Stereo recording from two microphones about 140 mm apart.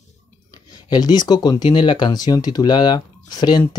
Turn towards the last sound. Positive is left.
turn(degrees=30)  # may be behind; listen again after turning